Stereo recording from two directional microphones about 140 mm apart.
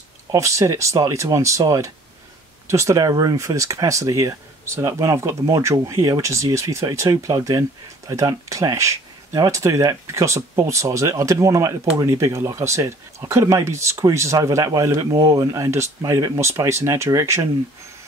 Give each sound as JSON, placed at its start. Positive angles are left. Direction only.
{"t": 0.3, "sound": "speech", "side_deg": -20}